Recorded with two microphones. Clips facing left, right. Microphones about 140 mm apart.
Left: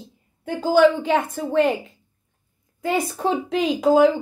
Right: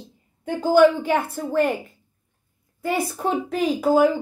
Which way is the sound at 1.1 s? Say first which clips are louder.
Left 1 dB; 15° left (ahead or behind).